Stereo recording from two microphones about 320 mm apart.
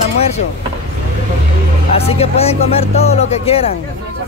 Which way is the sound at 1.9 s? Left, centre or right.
Centre.